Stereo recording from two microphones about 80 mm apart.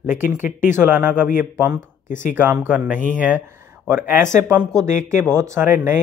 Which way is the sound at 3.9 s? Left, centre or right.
Right.